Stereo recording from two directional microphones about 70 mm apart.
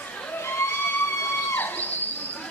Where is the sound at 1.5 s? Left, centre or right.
Left.